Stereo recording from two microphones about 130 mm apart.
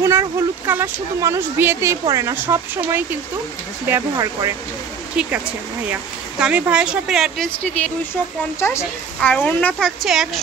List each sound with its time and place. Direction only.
0.0 s speech: 20° right (ahead or behind)
6.4 s speech: 10° right (ahead or behind)
7.6 s a woman's voice: 10° left (ahead or behind)